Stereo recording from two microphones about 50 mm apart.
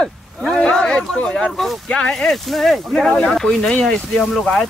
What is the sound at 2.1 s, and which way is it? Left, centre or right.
A man's voice, centre.